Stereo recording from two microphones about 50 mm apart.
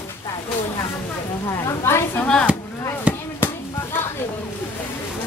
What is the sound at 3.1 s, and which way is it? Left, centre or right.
Chop, right.